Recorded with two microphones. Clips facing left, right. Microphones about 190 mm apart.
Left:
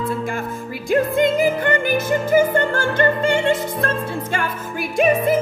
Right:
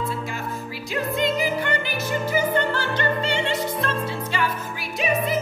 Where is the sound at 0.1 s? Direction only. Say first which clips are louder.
Left 5 dB; 50° left (ahead or behind).